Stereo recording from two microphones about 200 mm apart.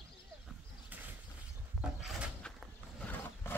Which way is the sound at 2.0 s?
Centre (ahead or behind).